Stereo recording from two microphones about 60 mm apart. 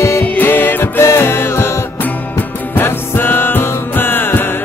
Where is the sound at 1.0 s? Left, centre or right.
Left.